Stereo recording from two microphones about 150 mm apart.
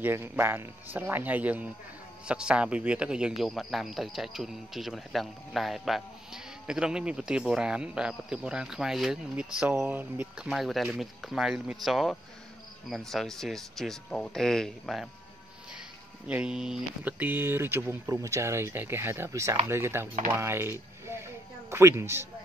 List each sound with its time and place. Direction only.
0.0 s a man's voice: 15° right (ahead or behind); by 15.0 s centre (ahead or behind)
16.3 s speech: 5° right (ahead or behind)